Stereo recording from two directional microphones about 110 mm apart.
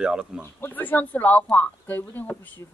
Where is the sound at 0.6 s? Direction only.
15° left (ahead or behind).